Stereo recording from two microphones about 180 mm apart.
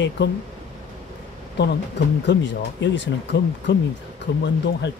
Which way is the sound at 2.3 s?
80° left.